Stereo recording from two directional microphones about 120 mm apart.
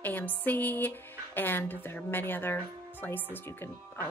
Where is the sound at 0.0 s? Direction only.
15° left (ahead or behind).